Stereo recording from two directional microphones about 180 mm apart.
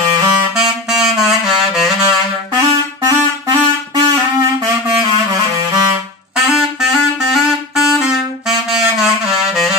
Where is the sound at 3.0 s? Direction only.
20° right (ahead or behind).